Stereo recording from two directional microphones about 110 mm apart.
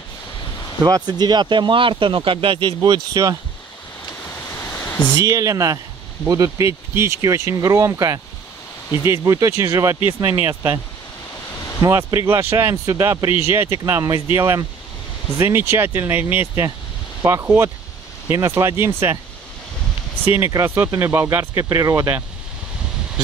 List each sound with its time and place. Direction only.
0.8 s speech: 35° right (ahead or behind)
5.1 s speech: 30° right (ahead or behind)
9.9 s speech: 50° left (ahead or behind)
11.8 s speech: 25° right (ahead or behind)
20.2 s speech: 20° right (ahead or behind)